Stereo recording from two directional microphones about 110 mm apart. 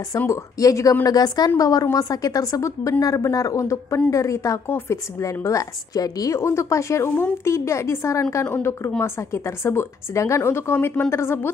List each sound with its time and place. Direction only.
0.3 s a woman's voice: 30° left (ahead or behind)